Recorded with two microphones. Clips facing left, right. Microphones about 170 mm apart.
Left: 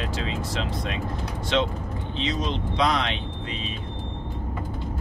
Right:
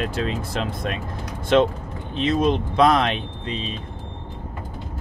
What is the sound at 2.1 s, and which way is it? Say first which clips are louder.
Speech: right 8 dB; 55° right (ahead or behind).